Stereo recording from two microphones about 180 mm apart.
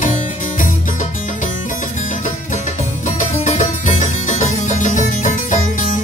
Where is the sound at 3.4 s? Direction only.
40° left (ahead or behind).